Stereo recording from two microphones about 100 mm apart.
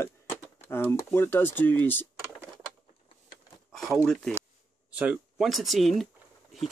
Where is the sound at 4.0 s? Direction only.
5° left (ahead or behind).